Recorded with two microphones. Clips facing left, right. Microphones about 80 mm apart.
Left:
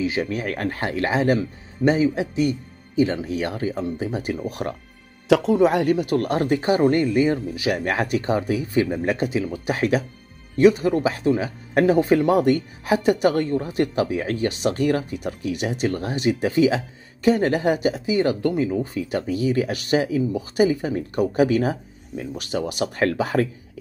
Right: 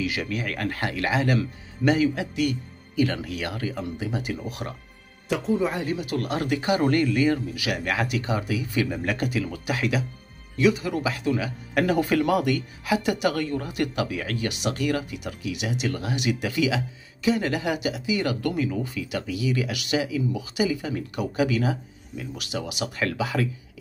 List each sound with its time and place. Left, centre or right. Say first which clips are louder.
0.0 s a man's voice: left 4 dB; left
5.3 s speech: left 8 dB; left
6.8 s a man's voice: left 2 dB; left
9.7 s a man's voice: left 6 dB; left
18.9 s a man's voice: left 5 dB; left